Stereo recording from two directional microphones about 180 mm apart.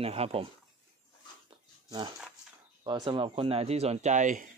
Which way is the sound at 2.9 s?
25° right (ahead or behind).